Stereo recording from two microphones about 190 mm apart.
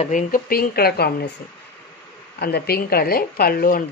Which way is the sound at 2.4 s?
55° left (ahead or behind).